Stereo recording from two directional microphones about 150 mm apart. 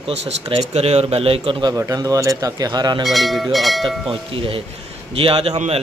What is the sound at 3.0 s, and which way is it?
Speech, centre (ahead or behind).